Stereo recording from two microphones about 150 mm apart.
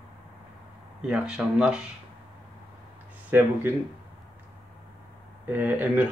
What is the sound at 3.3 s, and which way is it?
Speech, 15° right (ahead or behind).